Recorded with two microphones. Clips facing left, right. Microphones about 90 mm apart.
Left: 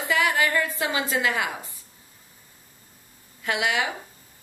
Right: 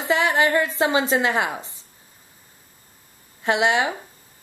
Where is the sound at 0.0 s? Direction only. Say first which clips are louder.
Right 3 dB; 25° right (ahead or behind).